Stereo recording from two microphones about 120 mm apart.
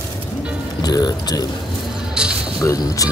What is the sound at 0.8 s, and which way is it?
Speech, 35° left (ahead or behind).